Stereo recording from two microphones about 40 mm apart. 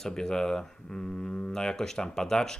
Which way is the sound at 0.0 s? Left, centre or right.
Centre.